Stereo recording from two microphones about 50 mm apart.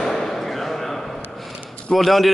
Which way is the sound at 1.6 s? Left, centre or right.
Left.